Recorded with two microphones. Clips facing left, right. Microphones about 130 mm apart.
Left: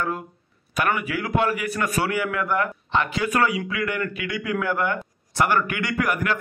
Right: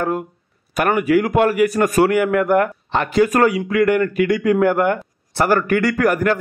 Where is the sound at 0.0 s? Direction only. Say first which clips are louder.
Right 6 dB; 50° right (ahead or behind).